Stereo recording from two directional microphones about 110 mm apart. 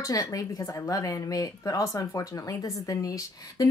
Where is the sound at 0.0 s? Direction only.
30° left (ahead or behind).